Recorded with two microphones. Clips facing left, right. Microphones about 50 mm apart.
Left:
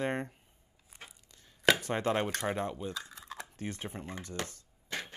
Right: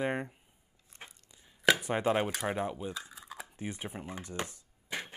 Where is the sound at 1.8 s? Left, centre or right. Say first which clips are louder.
Right 2 dB; centre.